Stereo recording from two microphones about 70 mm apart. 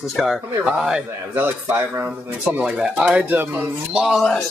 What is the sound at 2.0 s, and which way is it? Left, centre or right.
Speech, right.